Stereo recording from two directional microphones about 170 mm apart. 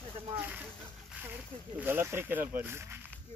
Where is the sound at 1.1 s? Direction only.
10° right (ahead or behind).